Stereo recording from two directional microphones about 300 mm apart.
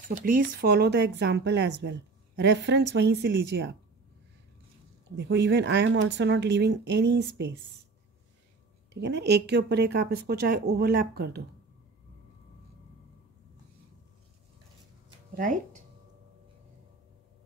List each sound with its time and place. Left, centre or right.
0.2 s speech: right
5.1 s speech: right
8.9 s speech: right
15.3 s speech: right